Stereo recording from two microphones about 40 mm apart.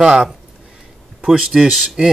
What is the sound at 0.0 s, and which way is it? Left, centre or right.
Speech, centre.